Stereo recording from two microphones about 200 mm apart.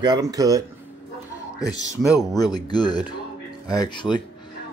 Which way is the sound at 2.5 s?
20° left (ahead or behind).